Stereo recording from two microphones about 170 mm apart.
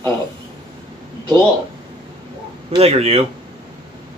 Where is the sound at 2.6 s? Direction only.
35° right (ahead or behind).